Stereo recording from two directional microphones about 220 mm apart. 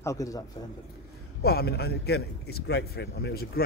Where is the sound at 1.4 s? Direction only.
45° left (ahead or behind).